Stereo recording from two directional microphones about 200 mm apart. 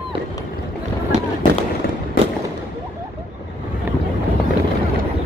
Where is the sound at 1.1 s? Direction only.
35° right (ahead or behind).